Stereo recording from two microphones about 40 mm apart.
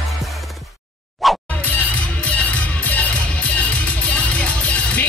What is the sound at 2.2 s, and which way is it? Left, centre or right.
Music, left.